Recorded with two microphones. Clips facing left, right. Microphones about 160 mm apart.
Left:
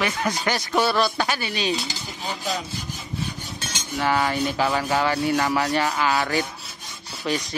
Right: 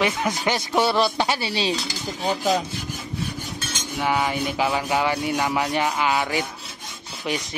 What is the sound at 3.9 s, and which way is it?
Rub, 10° right (ahead or behind).